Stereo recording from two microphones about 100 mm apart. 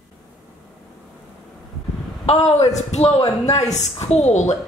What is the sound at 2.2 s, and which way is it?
Speech, 85° left.